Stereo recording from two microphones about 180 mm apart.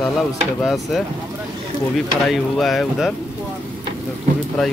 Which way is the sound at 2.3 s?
Centre (ahead or behind).